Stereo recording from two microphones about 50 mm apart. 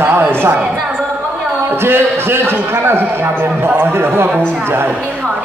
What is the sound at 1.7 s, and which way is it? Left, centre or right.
A man's voice, right.